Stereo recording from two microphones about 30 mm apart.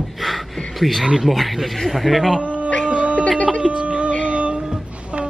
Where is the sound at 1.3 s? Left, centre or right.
Centre.